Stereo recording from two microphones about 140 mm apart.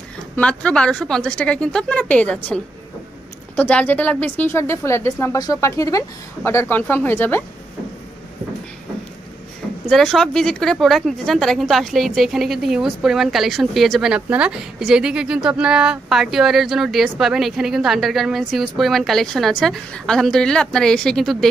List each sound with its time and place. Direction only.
0.4 s a woman's voice: 10° left (ahead or behind)
9.8 s a woman's voice: 5° left (ahead or behind)